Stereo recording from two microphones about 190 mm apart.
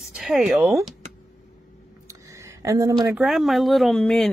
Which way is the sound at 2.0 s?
15° right (ahead or behind).